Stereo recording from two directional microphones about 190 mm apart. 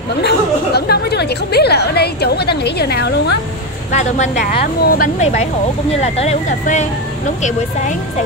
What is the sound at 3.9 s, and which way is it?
A woman's voice, 40° left (ahead or behind).